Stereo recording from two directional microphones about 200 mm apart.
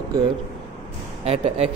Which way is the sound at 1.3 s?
30° right (ahead or behind).